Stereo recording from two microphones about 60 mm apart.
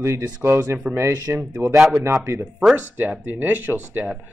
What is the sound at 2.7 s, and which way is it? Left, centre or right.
Speech, right.